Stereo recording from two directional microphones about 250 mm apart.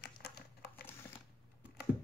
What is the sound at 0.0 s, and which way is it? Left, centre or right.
Crumpling, left.